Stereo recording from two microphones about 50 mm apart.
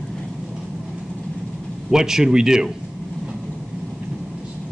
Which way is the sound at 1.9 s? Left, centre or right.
Centre.